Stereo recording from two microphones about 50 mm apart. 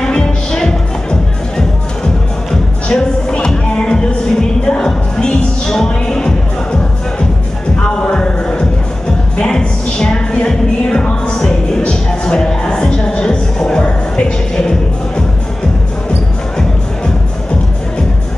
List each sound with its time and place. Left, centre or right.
0.0 s music: centre
2.9 s music: centre
7.8 s a sound: left
9.4 s music: centre
11.3 s music: centre